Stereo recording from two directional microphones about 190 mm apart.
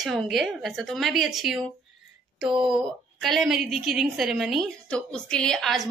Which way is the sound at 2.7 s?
Centre (ahead or behind).